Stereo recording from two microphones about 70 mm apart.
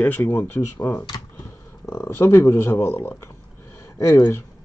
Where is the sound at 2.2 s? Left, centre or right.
Left.